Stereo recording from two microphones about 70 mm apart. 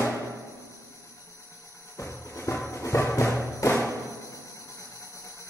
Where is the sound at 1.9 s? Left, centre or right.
Left.